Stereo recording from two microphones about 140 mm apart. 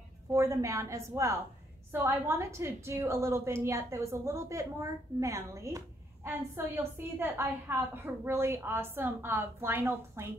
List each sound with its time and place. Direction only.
0.3 s a woman's voice: 20° right (ahead or behind)